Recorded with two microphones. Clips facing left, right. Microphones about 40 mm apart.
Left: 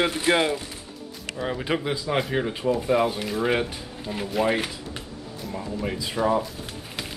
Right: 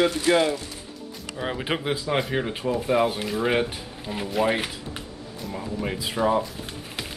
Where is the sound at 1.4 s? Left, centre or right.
Centre.